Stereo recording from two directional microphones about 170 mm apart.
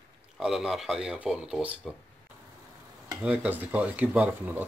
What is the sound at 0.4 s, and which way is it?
Speech, centre (ahead or behind).